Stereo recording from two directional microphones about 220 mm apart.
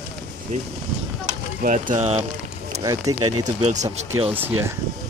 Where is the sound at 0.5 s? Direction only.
35° right (ahead or behind).